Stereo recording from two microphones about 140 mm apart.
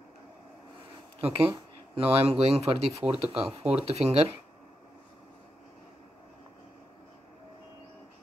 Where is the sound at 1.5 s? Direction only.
40° right (ahead or behind).